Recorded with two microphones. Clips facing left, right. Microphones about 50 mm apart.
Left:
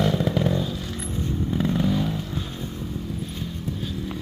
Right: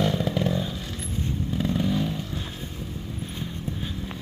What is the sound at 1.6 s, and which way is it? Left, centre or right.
Vehicle, centre.